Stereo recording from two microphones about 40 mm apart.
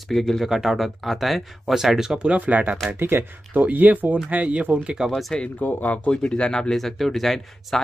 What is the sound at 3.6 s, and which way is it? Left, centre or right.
Speech, right.